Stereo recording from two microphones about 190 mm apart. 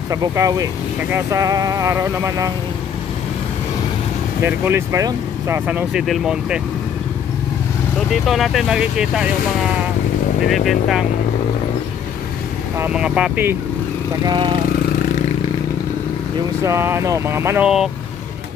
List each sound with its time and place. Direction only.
0.1 s speech: 20° right (ahead or behind)
4.4 s speech: 10° right (ahead or behind)
8.1 s speech: centre (ahead or behind)
10.5 s speech: centre (ahead or behind)
12.7 s speech: 5° right (ahead or behind)
14.2 s speech: 25° right (ahead or behind)
16.6 s speech: 15° right (ahead or behind)